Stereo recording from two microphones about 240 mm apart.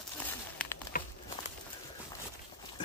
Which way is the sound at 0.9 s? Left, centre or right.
Left.